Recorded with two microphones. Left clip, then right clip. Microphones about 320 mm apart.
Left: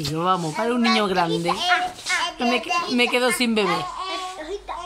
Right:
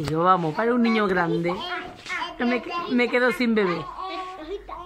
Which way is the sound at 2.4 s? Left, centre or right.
Centre.